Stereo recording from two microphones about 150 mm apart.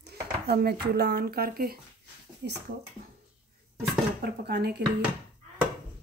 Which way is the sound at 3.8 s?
90° right.